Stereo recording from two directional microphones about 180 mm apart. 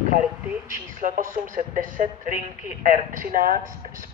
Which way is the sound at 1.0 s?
45° right (ahead or behind).